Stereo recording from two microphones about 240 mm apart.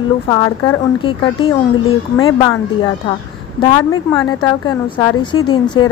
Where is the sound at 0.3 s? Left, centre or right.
Left.